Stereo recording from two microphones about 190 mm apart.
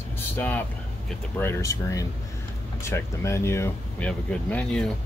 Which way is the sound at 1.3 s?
15° left (ahead or behind).